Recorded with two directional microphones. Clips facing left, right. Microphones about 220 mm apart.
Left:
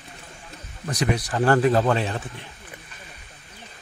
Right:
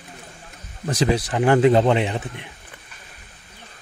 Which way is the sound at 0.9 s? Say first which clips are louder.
Right 4 dB; 30° right (ahead or behind).